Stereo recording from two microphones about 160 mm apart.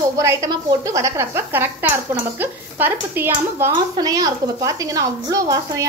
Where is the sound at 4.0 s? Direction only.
25° right (ahead or behind).